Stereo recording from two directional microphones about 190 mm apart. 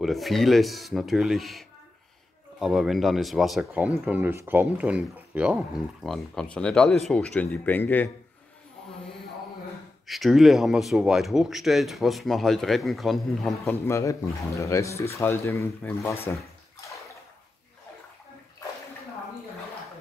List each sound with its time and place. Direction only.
0.0 s speech: centre (ahead or behind)
10.0 s speech: centre (ahead or behind)
13.7 s speech: 15° left (ahead or behind)